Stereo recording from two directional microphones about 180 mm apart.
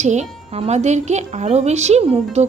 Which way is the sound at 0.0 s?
40° right (ahead or behind).